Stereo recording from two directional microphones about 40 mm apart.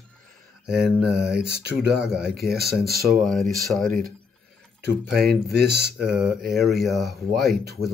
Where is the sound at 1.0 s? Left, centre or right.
Centre.